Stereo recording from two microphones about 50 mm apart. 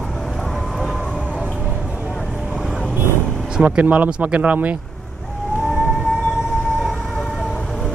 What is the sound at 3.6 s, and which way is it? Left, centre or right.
Speech, right.